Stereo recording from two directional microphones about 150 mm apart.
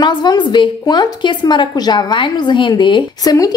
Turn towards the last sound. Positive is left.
turn(degrees=30)  # may be behind; listen again after turning